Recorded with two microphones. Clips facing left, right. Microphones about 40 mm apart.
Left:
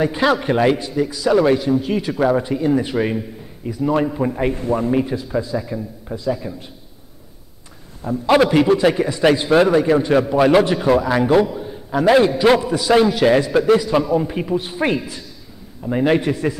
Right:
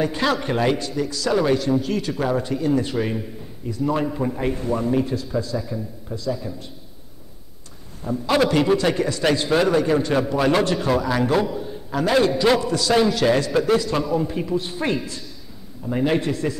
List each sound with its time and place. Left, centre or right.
0.0 s a man's voice: centre
8.1 s a man's voice: centre